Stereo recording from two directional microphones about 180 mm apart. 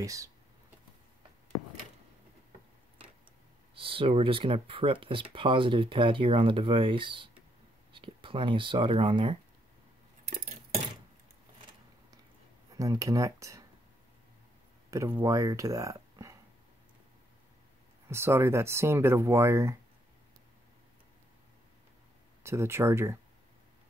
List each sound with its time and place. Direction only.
0.0 s speech: 20° right (ahead or behind)
3.7 s speech: 30° right (ahead or behind)
12.7 s speech: 20° right (ahead or behind)
14.9 s speech: 15° right (ahead or behind)
18.0 s speech: 15° right (ahead or behind)
22.4 s speech: 15° right (ahead or behind)